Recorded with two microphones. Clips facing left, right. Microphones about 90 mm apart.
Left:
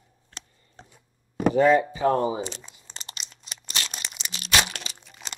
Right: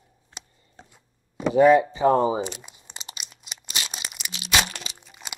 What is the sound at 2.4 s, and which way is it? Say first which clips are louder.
Speech: right 2 dB; 5° right (ahead or behind).